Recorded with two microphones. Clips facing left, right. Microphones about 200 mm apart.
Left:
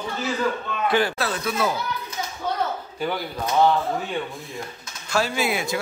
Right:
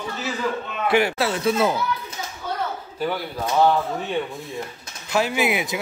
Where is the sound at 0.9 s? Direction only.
25° right (ahead or behind).